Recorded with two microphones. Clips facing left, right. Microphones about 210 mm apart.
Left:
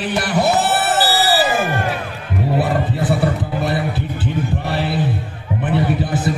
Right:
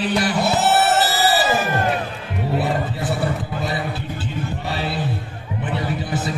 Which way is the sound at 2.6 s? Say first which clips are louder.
Left 3 dB; 55° left (ahead or behind).